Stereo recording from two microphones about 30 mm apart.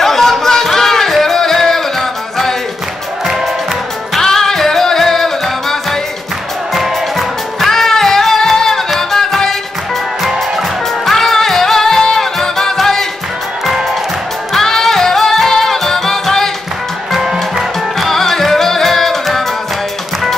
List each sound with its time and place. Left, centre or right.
0.0 s music: centre
4.2 s music: centre
6.7 s music: centre
7.7 s music: centre
11.1 s music: centre
14.5 s music: centre
17.1 s music: centre
17.9 s music: centre